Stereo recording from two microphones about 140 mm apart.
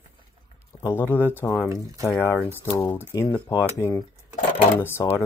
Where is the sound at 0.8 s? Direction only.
15° left (ahead or behind).